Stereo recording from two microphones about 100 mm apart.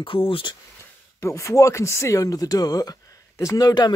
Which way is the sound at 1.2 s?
30° left (ahead or behind).